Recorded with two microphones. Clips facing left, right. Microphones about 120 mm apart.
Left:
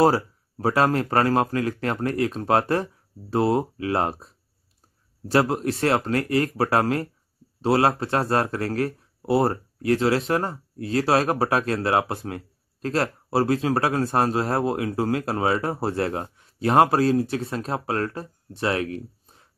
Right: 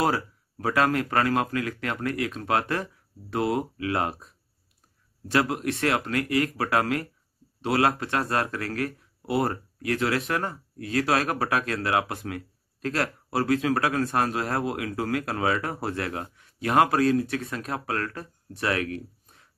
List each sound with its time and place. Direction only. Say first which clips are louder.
0.0 s speech: left 6 dB; 35° left (ahead or behind)